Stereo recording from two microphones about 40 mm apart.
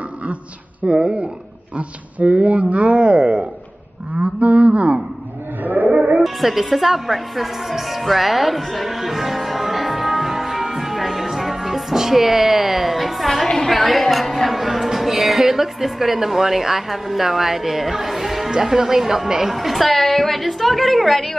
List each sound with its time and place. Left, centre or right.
0.8 s speech: right
1.8 s speech: right
5.6 s a sound: right
6.2 s music: centre
13.7 s a woman's voice: centre
19.5 s a woman's voice: centre